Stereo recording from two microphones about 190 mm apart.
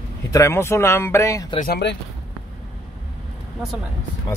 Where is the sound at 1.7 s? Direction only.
60° left (ahead or behind).